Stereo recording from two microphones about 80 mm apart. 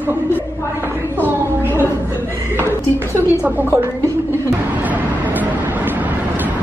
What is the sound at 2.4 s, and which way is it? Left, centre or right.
A woman's voice, right.